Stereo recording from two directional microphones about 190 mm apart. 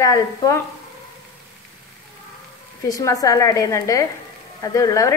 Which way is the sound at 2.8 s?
20° left (ahead or behind).